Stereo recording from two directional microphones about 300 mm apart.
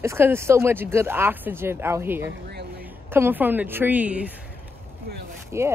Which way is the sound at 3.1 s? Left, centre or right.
Centre.